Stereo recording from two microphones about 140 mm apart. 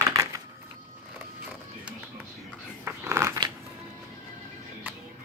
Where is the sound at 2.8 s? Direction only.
20° right (ahead or behind).